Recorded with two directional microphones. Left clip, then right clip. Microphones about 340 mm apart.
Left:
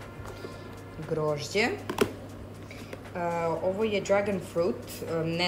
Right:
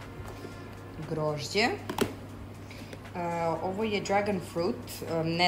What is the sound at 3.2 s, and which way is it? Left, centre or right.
Speech, centre.